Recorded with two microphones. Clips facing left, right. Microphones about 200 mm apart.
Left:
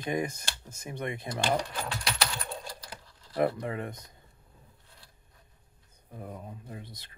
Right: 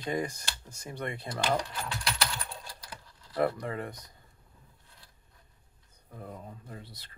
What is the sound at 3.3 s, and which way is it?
Speech, 20° left (ahead or behind).